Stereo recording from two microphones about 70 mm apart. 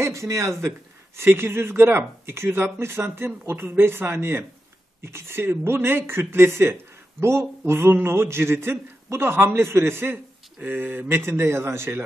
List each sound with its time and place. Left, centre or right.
0.0 s speech: right